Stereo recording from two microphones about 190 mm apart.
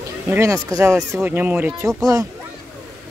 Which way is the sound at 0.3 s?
15° right (ahead or behind).